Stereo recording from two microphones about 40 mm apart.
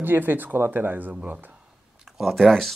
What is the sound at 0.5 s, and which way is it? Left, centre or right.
Speech, right.